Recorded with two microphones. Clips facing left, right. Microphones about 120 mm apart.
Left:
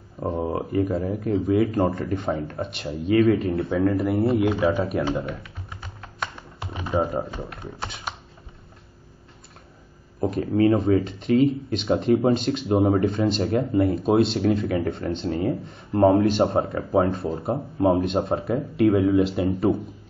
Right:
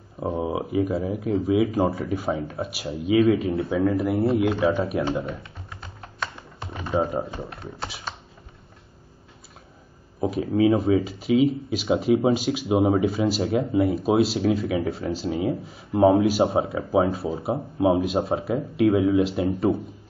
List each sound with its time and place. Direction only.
0.2 s speech: 5° right (ahead or behind)
6.6 s typing: 10° left (ahead or behind)
10.2 s speech: 5° right (ahead or behind)